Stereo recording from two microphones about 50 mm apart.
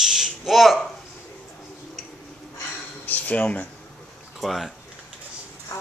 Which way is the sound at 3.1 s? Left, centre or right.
Left.